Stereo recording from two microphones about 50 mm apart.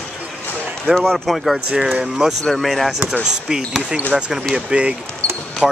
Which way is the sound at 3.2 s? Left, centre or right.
Centre.